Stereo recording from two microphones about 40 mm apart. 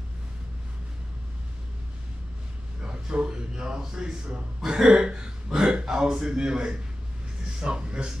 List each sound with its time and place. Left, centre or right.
2.8 s a man's voice: right